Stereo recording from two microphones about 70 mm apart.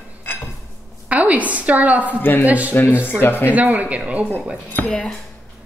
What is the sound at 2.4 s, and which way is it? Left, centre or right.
Speech, right.